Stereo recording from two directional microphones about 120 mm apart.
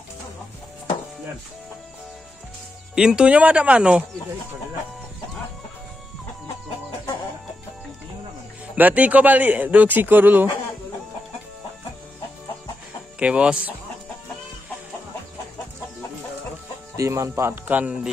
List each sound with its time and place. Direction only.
2.9 s a man's voice: 5° right (ahead or behind)
8.7 s a man's voice: 15° right (ahead or behind)
13.2 s a man's voice: 10° right (ahead or behind)
16.9 s speech: 25° right (ahead or behind); by 18.1 s 10° right (ahead or behind)